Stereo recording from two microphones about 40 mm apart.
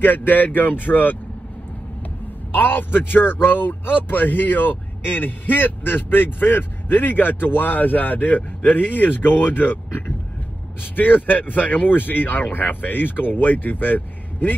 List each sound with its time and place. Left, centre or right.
0.0 s a man's voice: left
2.5 s a man's voice: left